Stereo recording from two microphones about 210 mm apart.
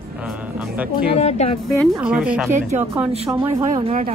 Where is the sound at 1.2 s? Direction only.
30° left (ahead or behind).